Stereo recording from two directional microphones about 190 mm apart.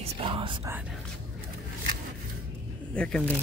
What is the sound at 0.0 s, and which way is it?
Whispering, 30° right (ahead or behind).